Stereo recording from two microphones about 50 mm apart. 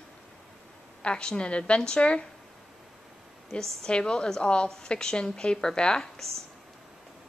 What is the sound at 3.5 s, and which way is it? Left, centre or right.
Speech, centre.